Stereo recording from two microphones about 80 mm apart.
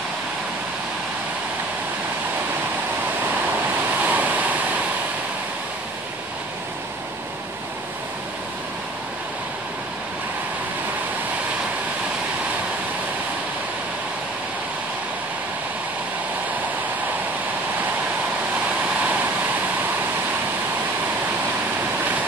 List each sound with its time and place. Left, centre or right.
4.0 s waves: centre